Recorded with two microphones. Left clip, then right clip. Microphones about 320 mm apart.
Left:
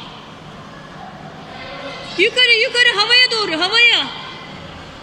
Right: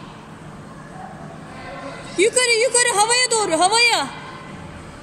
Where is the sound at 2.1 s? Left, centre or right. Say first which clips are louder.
Left 4 dB; centre.